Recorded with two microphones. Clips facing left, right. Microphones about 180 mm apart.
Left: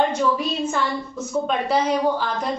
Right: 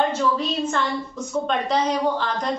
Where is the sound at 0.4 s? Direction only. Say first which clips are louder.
Even; 10° left (ahead or behind).